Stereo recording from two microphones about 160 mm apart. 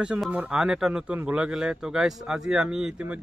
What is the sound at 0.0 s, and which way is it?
Speech, 5° right (ahead or behind).